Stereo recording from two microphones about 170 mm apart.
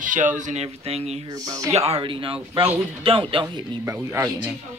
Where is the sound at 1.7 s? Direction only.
35° right (ahead or behind).